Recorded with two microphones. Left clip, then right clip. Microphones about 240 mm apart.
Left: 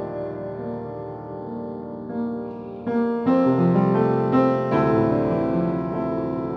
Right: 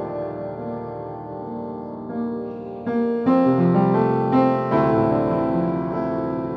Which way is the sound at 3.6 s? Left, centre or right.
Centre.